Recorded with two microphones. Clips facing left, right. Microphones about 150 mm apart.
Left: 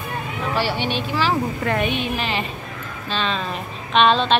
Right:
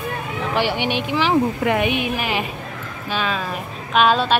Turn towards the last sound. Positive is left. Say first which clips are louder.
# even
turn(degrees=-5)  # may be behind; listen again after turning